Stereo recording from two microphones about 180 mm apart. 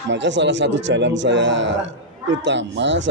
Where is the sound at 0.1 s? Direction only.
85° right.